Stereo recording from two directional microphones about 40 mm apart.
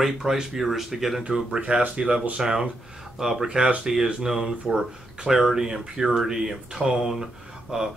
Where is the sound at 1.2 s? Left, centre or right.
Centre.